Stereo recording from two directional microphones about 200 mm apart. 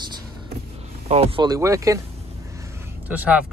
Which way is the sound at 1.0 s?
30° right (ahead or behind).